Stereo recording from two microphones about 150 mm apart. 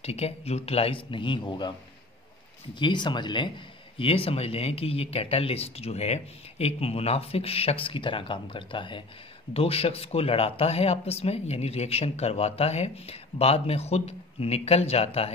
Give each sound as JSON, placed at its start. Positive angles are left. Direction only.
{"t": 0.0, "sound": "a man's voice", "side_deg": 45}
{"t": 2.7, "sound": "a man's voice", "side_deg": 30}